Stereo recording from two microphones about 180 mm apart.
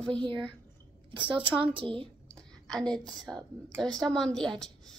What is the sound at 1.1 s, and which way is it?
Speech, 30° right (ahead or behind).